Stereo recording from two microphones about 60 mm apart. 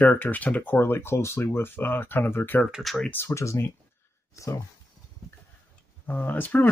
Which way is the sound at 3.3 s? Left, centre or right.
Left.